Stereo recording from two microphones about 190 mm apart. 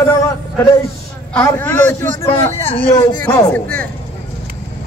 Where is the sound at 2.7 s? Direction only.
30° left (ahead or behind).